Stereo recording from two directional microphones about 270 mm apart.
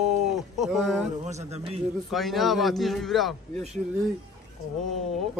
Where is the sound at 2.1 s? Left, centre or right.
Centre.